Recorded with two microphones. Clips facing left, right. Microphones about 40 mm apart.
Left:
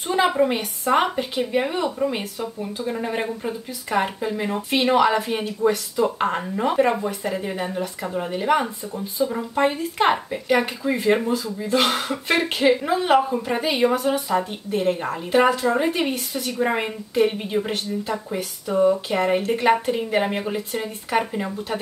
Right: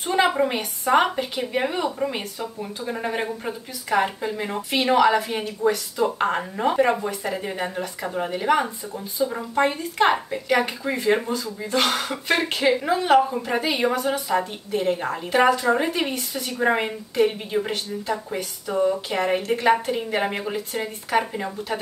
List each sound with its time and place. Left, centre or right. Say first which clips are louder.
0.1 s a woman's voice: left 1 dB; centre
16.8 s a woman's voice: left 1 dB; centre